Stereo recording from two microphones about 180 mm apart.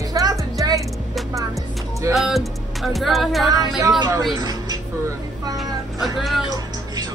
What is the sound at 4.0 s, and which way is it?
Speech, 20° right (ahead or behind).